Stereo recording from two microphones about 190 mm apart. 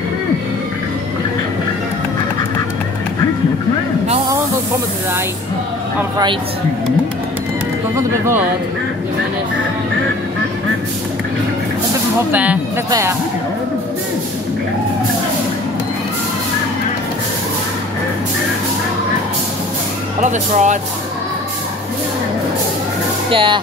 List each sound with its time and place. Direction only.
7.9 s speech: 15° right (ahead or behind)
12.3 s speech: 10° right (ahead or behind)
20.2 s speech: 40° right (ahead or behind)
23.3 s speech: 25° right (ahead or behind)